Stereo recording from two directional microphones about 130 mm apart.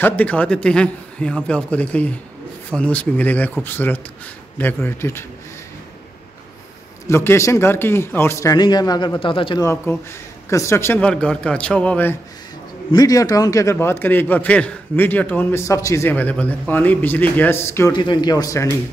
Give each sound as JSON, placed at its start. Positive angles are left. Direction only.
{"t": 0.0, "sound": "a man's voice", "side_deg": 10}
{"t": 7.1, "sound": "speech", "side_deg": 20}
{"t": 8.5, "sound": "speech", "side_deg": 35}
{"t": 9.6, "sound": "a man's voice", "side_deg": 20}
{"t": 12.9, "sound": "a man's voice", "side_deg": 25}
{"t": 17.9, "sound": "speech", "side_deg": 35}